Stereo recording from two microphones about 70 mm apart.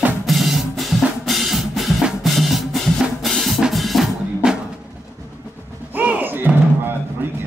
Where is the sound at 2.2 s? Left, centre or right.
Centre.